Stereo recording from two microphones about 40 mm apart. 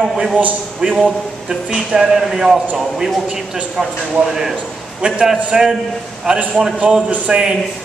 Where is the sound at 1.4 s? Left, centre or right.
Centre.